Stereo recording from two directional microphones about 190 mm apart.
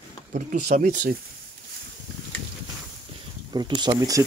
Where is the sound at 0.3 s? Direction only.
45° right (ahead or behind).